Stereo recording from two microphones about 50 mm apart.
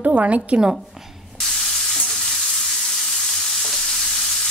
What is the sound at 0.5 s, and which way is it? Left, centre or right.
Speech, centre.